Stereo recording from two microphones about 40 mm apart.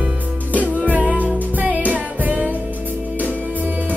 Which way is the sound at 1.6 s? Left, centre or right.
Right.